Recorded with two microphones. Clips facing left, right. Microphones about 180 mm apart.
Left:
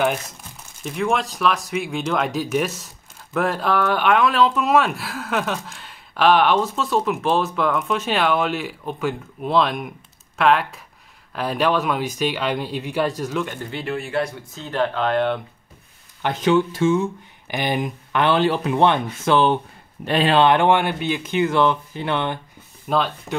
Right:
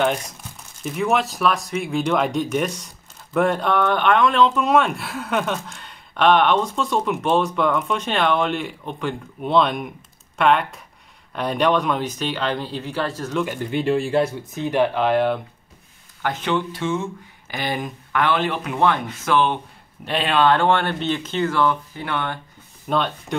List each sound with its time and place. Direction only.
0.8 s speech: centre (ahead or behind); by 13.3 s 15° left (ahead or behind)
13.3 s speech: centre (ahead or behind)
13.7 s speech: 25° right (ahead or behind); by 15.4 s 5° right (ahead or behind)
16.3 s speech: 40° left (ahead or behind)
17.5 s speech: 20° left (ahead or behind); by 20.3 s 45° left (ahead or behind)
20.3 s speech: 15° left (ahead or behind)
22.8 s speech: centre (ahead or behind)